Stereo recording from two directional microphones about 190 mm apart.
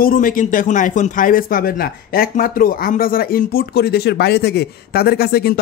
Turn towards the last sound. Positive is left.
turn(degrees=55)  # may be behind; listen again after turning